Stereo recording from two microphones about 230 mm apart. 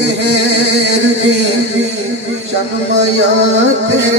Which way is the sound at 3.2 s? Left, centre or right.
Right.